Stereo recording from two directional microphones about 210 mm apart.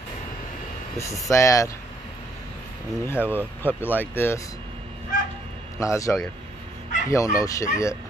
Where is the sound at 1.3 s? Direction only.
15° left (ahead or behind).